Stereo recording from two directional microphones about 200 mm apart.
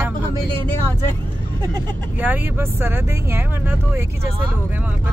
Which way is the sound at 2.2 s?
10° right (ahead or behind).